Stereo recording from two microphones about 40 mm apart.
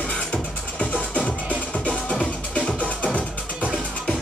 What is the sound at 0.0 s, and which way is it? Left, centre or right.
Music, left.